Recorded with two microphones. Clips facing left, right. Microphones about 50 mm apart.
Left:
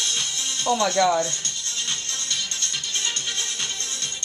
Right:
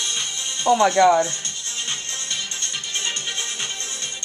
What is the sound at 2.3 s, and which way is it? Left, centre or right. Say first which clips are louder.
Music: even; centre.